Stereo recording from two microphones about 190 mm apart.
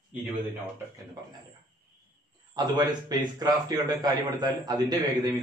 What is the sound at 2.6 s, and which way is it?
A man's voice, 20° right (ahead or behind).